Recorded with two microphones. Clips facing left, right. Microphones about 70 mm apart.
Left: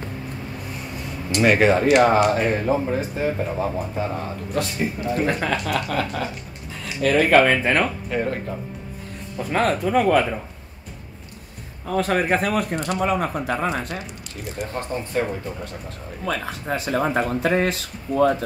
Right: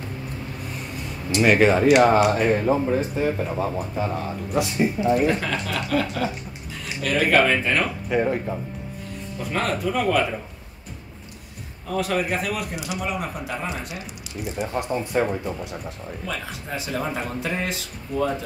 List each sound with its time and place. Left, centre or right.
1.4 s speech: centre
4.6 s speech: centre
5.2 s speech: left
8.1 s speech: centre
9.5 s speech: left
11.8 s speech: left
14.7 s speech: centre
16.3 s speech: left